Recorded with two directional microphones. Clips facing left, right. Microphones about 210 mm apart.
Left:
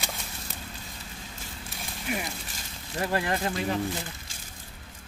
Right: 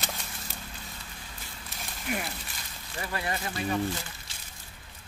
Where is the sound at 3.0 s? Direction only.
55° left (ahead or behind).